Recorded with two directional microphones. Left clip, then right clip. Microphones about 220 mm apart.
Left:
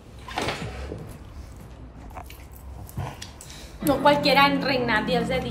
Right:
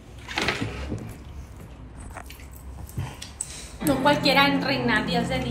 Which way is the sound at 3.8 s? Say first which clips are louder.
Left 2 dB; 10° left (ahead or behind).